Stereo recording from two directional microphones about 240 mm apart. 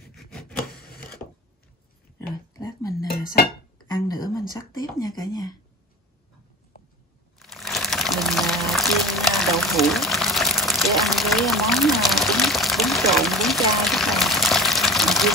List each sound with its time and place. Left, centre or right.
0.1 s a sound: centre
0.6 s rub: left
2.1 s dishes: centre
3.9 s a sound: centre
4.5 s whispering: centre
7.3 s crumpling: centre